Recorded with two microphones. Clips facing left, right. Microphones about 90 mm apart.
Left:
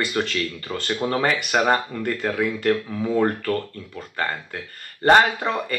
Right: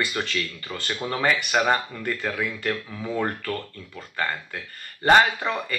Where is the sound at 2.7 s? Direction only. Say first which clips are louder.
Left 8 dB; 25° left (ahead or behind).